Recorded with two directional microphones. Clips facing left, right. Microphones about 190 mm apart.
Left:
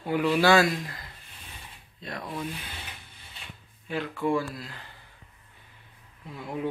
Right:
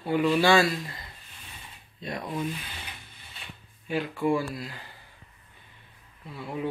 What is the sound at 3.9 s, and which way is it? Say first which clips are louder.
Speech: right 1 dB; 10° right (ahead or behind).